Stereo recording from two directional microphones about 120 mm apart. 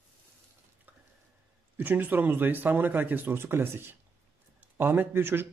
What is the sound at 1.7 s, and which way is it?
A man's voice, 15° right (ahead or behind).